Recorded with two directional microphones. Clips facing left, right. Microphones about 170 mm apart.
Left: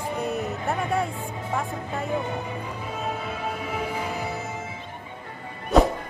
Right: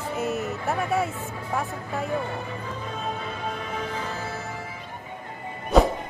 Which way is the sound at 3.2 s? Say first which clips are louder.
Left 1 dB; 10° left (ahead or behind).